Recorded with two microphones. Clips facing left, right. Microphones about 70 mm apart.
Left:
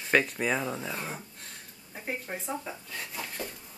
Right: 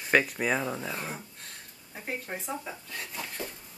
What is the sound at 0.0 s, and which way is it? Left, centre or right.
Speech, centre.